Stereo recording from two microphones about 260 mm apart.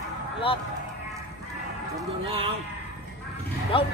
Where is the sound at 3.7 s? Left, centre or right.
Centre.